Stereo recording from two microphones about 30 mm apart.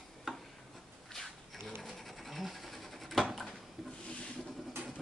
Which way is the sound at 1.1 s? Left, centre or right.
Centre.